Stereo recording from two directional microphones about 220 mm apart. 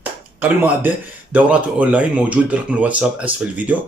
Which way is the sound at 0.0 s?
10° right (ahead or behind).